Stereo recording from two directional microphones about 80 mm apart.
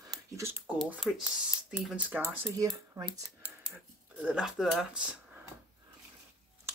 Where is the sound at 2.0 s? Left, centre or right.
Right.